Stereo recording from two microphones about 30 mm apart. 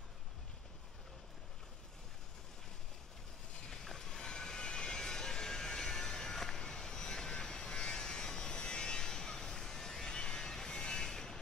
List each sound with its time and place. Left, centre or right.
3.7 s vehicle: centre
10.1 s vehicle: left